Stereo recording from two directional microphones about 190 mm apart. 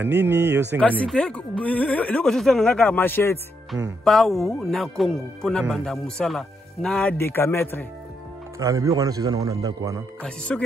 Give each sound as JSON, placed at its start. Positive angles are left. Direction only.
{"t": 0.0, "sound": "speech", "side_deg": -10}
{"t": 0.7, "sound": "speech", "side_deg": 5}
{"t": 4.0, "sound": "speech", "side_deg": 0}
{"t": 8.5, "sound": "speech", "side_deg": -15}
{"t": 10.2, "sound": "speech", "side_deg": 5}